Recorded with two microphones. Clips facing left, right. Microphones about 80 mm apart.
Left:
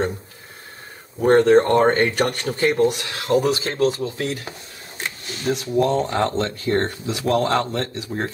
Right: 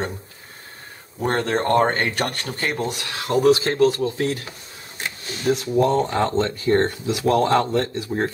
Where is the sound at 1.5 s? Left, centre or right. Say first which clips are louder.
Left 4 dB; centre.